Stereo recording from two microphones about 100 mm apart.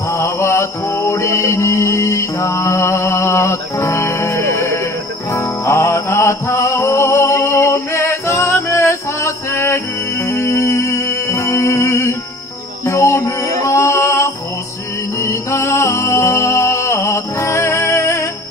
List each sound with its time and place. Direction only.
0.1 s music: 30° left (ahead or behind)